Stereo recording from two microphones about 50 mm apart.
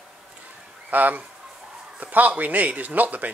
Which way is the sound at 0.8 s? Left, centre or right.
Right.